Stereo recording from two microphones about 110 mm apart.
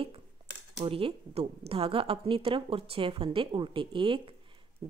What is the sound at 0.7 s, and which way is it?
A woman's voice, 55° right (ahead or behind).